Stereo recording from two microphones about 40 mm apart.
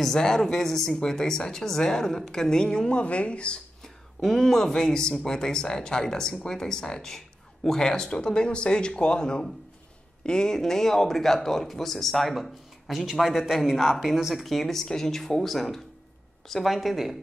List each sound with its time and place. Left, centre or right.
0.0 s speech: centre
3.0 s speech: left
3.8 s a man's voice: centre